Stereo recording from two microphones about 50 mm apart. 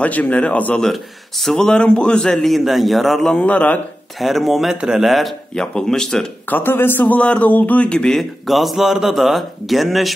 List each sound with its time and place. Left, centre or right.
0.0 s speech: left
1.4 s speech: centre
1.7 s a man's voice: centre
3.3 s a man's voice: left
4.2 s speech: centre
5.6 s a man's voice: centre
6.5 s speech: left
7.1 s speech: left
7.8 s a man's voice: centre
8.2 s speech: centre